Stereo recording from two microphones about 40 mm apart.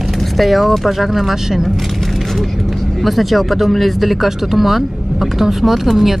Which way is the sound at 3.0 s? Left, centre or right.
Centre.